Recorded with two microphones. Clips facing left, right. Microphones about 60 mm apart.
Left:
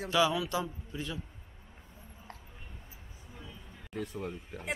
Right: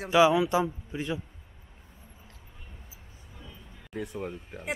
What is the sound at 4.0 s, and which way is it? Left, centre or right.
Speech, centre.